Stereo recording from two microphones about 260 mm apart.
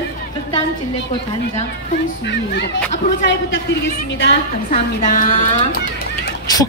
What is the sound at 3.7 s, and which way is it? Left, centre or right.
A woman's voice, left.